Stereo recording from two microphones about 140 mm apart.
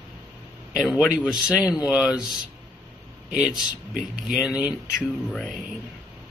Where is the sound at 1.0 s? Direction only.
Centre (ahead or behind).